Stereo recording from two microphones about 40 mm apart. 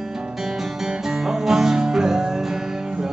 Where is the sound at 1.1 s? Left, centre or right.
Centre.